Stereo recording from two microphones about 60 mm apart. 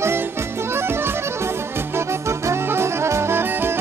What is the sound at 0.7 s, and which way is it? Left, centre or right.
Music, right.